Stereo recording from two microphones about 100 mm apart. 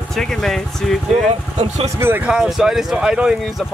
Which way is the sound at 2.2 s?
5° right (ahead or behind).